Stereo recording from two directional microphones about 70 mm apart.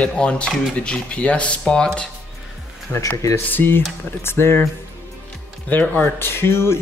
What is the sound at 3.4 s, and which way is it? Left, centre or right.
Speech, left.